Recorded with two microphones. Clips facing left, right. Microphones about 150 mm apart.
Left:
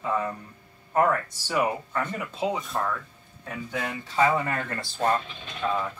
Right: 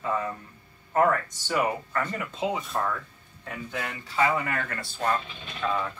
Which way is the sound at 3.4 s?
15° left (ahead or behind).